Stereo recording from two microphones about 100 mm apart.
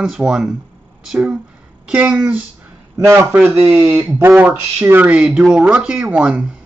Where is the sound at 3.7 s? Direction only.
30° right (ahead or behind).